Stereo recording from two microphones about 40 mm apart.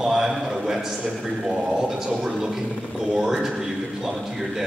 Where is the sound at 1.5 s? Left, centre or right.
Right.